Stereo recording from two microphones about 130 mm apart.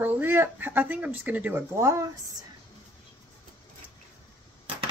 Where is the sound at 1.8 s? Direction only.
25° right (ahead or behind).